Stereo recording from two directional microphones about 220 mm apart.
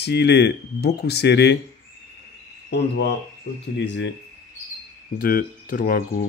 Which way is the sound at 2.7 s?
50° left (ahead or behind).